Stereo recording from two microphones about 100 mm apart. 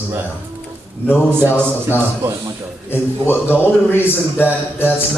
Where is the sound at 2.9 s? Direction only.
20° left (ahead or behind).